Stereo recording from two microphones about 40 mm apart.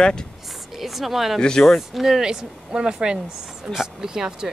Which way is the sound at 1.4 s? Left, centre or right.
Centre.